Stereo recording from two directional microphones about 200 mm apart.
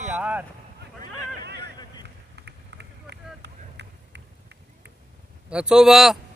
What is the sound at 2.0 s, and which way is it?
Vehicle, 60° right (ahead or behind).